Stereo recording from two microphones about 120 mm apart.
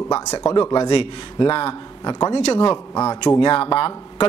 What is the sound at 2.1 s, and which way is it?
Speech, 30° left (ahead or behind).